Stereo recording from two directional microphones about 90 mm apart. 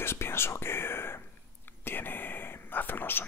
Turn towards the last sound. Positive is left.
turn(degrees=20)  # may be behind; listen again after turning